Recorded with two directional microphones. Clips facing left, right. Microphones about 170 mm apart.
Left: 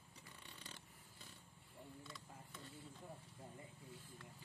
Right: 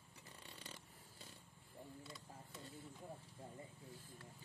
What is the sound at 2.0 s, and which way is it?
Printer, 30° right (ahead or behind).